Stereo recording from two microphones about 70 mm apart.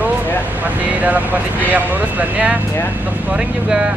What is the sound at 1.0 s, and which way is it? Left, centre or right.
Speech, right.